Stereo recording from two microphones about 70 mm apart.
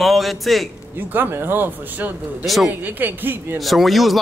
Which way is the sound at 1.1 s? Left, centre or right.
Right.